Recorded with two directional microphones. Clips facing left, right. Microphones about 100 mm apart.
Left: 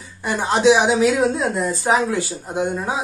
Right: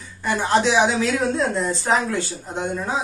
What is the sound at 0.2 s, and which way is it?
Speech, 15° left (ahead or behind).